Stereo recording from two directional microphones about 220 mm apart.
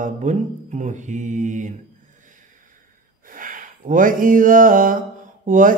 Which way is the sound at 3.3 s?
35° right (ahead or behind).